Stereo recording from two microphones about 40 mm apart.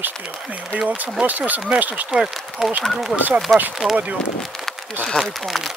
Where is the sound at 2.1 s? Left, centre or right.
Centre.